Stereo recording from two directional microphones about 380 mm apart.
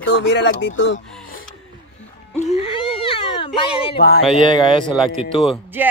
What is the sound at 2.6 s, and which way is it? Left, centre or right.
Speech, centre.